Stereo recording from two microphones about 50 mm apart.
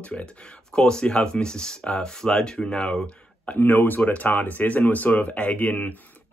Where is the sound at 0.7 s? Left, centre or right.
Centre.